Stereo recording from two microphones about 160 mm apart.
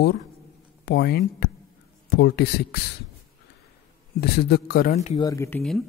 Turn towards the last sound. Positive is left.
turn(degrees=20)  # may be behind; listen again after turning